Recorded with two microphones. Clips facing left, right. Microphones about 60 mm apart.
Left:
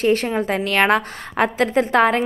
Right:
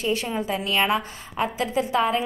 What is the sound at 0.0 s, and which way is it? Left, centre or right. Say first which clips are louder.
A woman's voice: left 7 dB; left.